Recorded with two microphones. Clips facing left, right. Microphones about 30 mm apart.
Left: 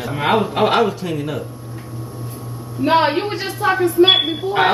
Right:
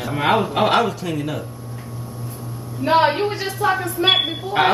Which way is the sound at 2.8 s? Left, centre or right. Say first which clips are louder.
Left 1 dB; centre.